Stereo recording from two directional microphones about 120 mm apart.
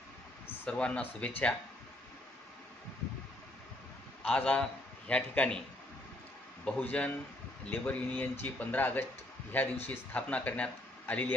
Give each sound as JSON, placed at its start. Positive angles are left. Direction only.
{"t": 0.7, "sound": "speech", "side_deg": 10}
{"t": 4.3, "sound": "a man's voice", "side_deg": 10}
{"t": 6.6, "sound": "speech", "side_deg": 10}